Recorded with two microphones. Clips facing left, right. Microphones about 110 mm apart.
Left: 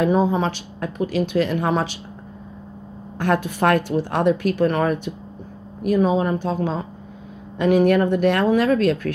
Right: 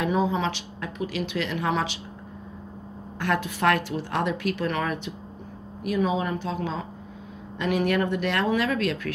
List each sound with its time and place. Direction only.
0.0 s speech: 40° left (ahead or behind)
3.2 s speech: 45° left (ahead or behind)